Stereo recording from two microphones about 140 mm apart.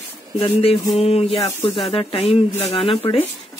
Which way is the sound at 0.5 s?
45° left (ahead or behind).